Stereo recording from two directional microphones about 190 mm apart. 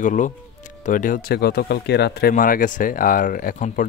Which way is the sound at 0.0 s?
40° left (ahead or behind).